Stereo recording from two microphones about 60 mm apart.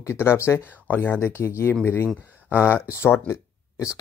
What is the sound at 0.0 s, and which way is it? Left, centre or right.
Speech, left.